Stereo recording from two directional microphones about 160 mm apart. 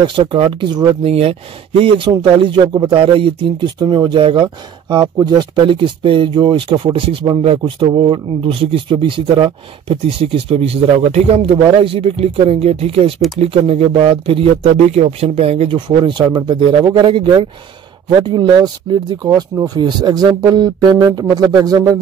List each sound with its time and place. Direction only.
0.0 s speech: 30° right (ahead or behind)